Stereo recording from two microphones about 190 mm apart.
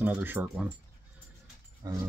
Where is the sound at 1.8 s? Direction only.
20° right (ahead or behind).